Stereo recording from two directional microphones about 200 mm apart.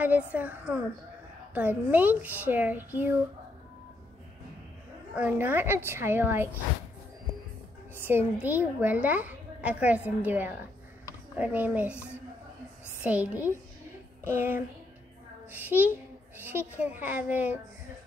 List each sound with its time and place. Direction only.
0.0 s a woman's voice: 5° right (ahead or behind)
5.1 s a woman's voice: 10° right (ahead or behind)
7.9 s a woman's voice: 10° right (ahead or behind)
13.0 s a woman's voice: 5° right (ahead or behind)